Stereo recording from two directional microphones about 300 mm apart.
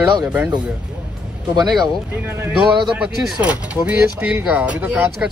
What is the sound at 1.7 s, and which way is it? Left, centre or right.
Speech, centre.